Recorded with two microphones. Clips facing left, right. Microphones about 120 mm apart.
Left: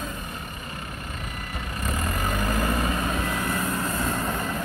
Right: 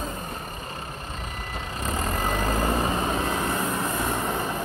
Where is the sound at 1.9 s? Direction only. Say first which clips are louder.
Right 2 dB; 30° right (ahead or behind).